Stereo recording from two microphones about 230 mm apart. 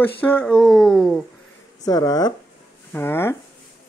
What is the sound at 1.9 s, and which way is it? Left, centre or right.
Speech, centre.